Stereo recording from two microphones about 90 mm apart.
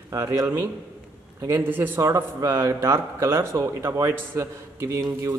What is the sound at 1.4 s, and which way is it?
Speech, 25° right (ahead or behind).